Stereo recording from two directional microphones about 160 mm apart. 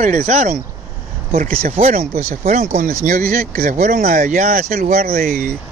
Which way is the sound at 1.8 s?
60° right (ahead or behind).